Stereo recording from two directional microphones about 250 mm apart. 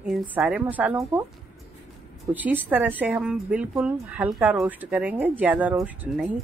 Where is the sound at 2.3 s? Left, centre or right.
Centre.